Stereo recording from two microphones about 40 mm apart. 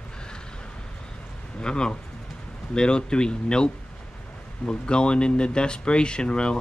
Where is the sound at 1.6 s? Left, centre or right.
Left.